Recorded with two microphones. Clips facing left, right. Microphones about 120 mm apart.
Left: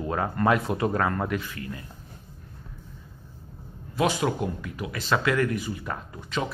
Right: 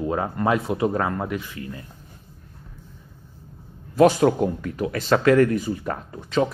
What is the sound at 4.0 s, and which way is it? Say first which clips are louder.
Speech: right 8 dB; 45° right (ahead or behind).